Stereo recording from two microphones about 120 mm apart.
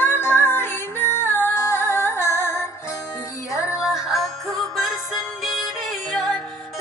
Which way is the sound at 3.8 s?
Centre (ahead or behind).